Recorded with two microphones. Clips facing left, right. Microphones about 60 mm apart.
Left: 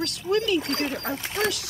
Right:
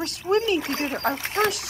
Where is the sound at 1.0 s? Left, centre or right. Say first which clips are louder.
Right 5 dB; right.